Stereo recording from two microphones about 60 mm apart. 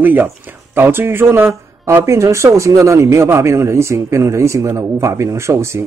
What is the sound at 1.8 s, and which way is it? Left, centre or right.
A man's voice, right.